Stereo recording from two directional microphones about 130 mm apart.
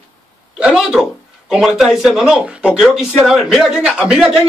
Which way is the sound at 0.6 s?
5° right (ahead or behind).